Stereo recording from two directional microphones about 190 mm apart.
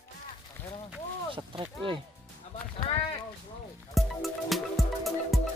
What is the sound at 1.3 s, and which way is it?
Speech, 25° right (ahead or behind).